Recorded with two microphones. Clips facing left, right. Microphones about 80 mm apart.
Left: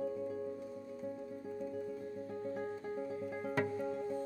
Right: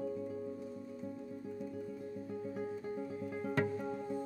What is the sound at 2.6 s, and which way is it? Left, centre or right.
Music, centre.